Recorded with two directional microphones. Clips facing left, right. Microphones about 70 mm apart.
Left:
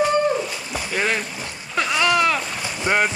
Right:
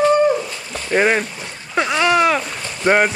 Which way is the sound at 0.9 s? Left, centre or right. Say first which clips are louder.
Right 7 dB; right.